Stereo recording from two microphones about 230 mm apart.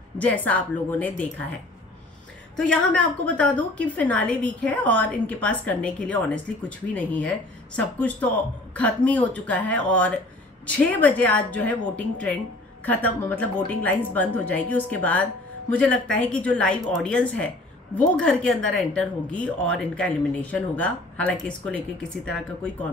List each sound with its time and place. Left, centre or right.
0.2 s speech: centre
2.5 s a woman's voice: centre